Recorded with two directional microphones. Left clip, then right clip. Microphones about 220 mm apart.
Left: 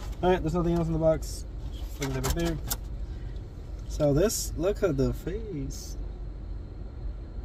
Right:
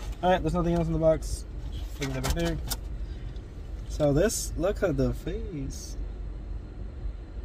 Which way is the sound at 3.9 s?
Centre (ahead or behind).